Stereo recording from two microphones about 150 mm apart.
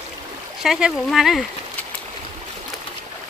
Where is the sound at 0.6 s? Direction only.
Centre (ahead or behind).